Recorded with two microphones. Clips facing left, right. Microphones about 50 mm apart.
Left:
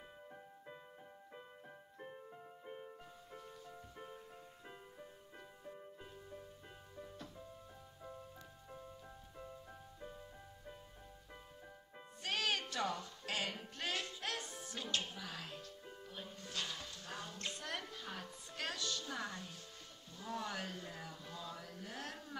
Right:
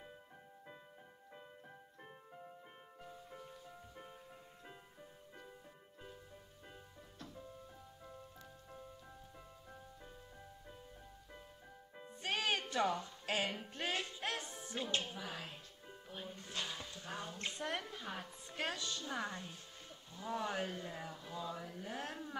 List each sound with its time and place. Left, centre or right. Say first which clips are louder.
2.0 s music: left 5 dB; centre
7.0 s music: left 4 dB; centre
12.2 s music: right 1 dB; right
20.2 s a sound: right 4 dB; centre